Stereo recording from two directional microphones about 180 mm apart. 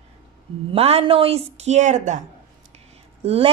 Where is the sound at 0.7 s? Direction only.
30° right (ahead or behind).